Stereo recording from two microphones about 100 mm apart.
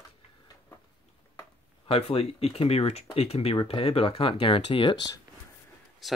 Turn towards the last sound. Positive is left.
turn(degrees=0)  # may be behind; listen again after turning